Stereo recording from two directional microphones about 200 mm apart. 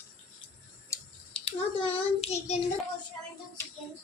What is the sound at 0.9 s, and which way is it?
Clicking, 15° left (ahead or behind).